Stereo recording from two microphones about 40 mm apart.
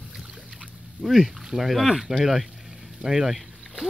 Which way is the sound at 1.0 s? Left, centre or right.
Centre.